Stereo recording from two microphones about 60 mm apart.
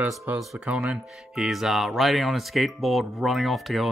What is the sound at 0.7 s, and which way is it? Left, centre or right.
Speech, centre.